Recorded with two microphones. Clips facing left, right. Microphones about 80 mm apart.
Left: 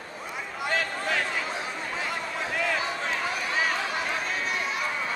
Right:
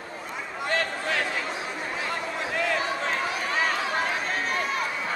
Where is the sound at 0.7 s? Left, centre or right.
Centre.